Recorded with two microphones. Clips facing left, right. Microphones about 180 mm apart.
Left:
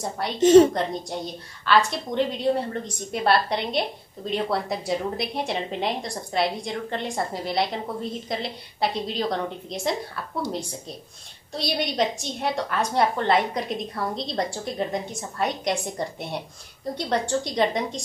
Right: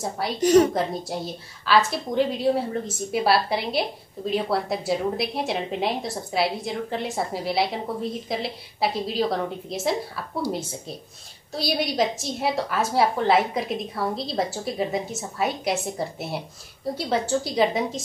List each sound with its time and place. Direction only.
0.4 s a woman's voice: 25° left (ahead or behind)
0.7 s a woman's voice: 5° right (ahead or behind)
11.5 s a woman's voice: centre (ahead or behind)